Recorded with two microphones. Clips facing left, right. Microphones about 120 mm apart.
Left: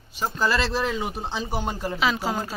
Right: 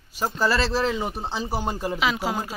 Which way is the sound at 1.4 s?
35° right (ahead or behind).